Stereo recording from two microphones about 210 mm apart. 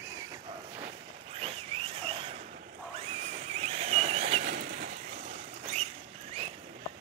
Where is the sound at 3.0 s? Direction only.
30° right (ahead or behind).